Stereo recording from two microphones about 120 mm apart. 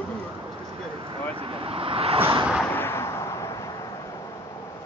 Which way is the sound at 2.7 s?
20° left (ahead or behind).